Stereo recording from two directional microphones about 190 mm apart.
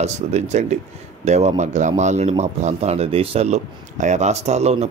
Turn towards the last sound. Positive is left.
turn(degrees=-35)  # may be behind; listen again after turning